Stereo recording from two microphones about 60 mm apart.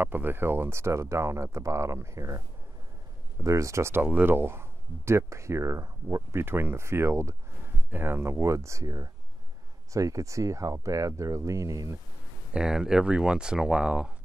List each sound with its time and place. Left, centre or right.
0.0 s speech: right
3.4 s speech: right
3.9 s speech: right
7.9 s speech: right
12.5 s speech: centre